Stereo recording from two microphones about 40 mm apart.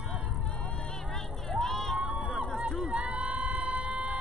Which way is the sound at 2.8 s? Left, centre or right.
Right.